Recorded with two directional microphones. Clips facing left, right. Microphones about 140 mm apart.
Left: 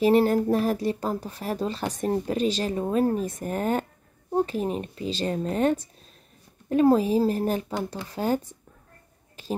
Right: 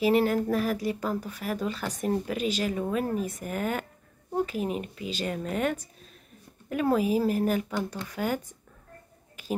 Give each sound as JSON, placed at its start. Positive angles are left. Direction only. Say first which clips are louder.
{"t": 0.0, "sound": "a woman's voice", "louder": "left 4 dB", "side_deg": 35}